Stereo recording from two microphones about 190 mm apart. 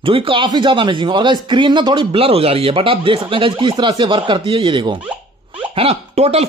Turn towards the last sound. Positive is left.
turn(degrees=-35)  # may be behind; listen again after turning